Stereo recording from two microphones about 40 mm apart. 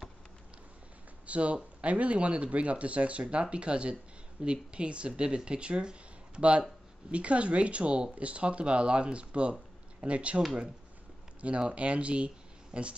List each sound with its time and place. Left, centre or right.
1.2 s speech: right
11.7 s speech: right